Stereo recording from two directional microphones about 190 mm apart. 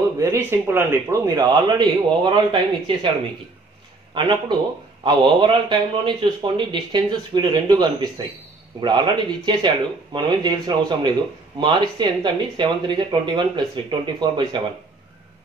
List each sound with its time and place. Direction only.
0.2 s a man's voice: 15° right (ahead or behind)
4.1 s a man's voice: 25° right (ahead or behind)